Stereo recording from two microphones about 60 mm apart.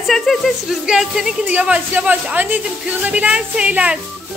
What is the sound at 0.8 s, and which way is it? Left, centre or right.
Music, centre.